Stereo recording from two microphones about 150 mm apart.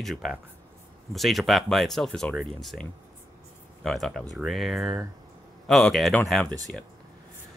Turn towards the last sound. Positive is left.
turn(degrees=5)  # may be behind; listen again after turning